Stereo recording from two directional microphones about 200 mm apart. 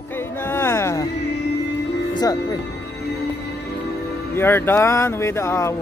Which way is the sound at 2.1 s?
20° left (ahead or behind).